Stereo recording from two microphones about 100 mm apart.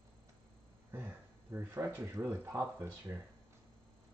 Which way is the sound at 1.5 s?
25° right (ahead or behind).